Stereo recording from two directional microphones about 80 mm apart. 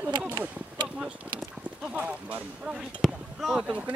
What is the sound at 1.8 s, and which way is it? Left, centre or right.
Speech, centre.